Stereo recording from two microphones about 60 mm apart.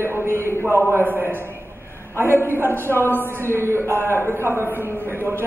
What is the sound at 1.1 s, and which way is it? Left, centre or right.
A man's voice, right.